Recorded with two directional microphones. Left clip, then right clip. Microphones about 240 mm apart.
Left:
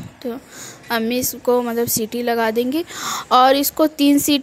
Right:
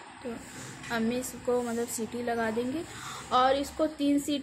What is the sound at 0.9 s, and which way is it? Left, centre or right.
A woman's voice, left.